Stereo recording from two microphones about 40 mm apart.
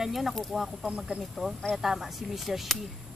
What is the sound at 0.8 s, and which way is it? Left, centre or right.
Speech, right.